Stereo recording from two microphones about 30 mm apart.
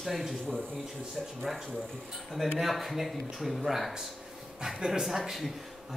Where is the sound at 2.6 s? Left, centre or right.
Centre.